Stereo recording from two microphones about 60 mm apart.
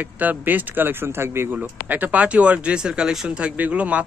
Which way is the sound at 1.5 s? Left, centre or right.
Right.